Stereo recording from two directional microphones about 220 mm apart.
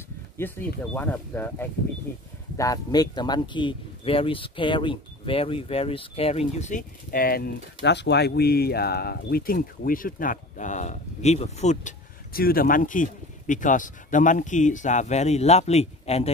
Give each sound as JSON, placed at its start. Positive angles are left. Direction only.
{"t": 0.4, "sound": "speech", "side_deg": 10}